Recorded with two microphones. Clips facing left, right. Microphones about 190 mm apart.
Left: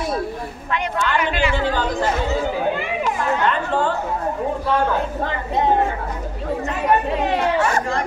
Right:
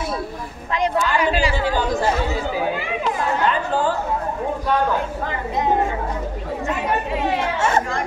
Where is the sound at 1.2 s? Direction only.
35° right (ahead or behind).